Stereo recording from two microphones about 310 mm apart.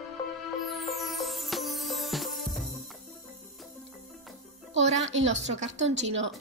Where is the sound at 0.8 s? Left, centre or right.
Centre.